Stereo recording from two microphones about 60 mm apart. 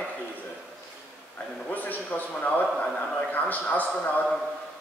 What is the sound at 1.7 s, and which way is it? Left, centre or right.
A man's voice, left.